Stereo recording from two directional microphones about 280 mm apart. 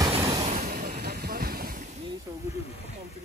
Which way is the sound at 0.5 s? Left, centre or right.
Right.